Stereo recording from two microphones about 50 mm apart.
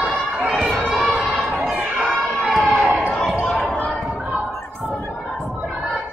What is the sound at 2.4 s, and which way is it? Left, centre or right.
Run, centre.